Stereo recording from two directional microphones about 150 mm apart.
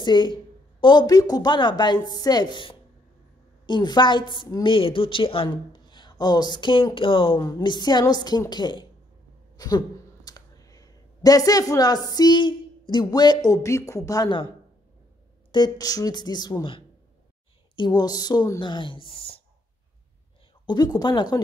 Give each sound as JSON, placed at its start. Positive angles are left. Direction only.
{"t": 0.0, "sound": "speech", "side_deg": 30}
{"t": 15.5, "sound": "speech", "side_deg": 25}
{"t": 20.6, "sound": "speech", "side_deg": 30}